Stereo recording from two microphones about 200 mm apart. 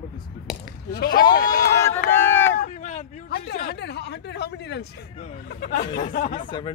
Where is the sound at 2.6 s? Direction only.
35° left (ahead or behind).